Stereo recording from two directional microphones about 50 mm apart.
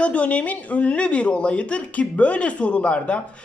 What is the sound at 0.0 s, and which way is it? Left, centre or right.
Speech, left.